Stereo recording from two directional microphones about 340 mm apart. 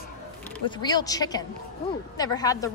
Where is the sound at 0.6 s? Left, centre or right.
Centre.